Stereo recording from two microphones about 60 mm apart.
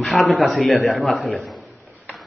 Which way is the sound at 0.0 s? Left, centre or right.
Centre.